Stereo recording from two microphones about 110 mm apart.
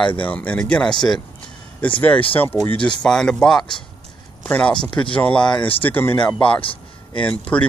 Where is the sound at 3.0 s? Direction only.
5° left (ahead or behind).